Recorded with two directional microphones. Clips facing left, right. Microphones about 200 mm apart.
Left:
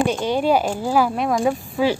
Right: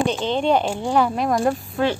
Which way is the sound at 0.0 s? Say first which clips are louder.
Left 1 dB; 10° left (ahead or behind).